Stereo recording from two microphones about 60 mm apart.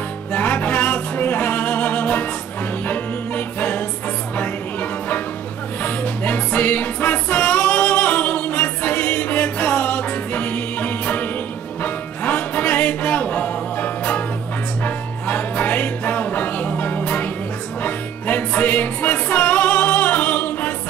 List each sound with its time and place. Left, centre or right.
0.3 s music: left
5.8 s music: left
15.2 s music: left